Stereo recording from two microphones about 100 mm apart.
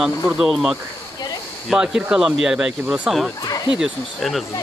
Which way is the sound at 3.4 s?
40° left (ahead or behind).